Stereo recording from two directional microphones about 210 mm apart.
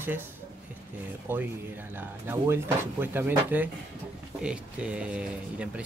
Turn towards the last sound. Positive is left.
turn(degrees=-5)  # may be behind; listen again after turning